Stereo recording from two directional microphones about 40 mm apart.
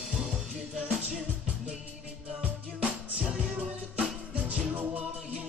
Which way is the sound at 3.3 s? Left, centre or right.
Right.